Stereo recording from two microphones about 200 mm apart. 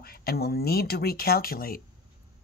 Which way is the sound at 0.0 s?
50° left (ahead or behind).